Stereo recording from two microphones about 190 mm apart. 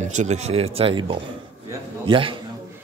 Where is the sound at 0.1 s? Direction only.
35° right (ahead or behind).